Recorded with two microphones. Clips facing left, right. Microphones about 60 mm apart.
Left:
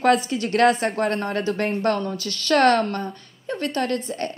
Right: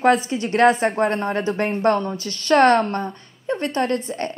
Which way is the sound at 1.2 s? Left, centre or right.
Right.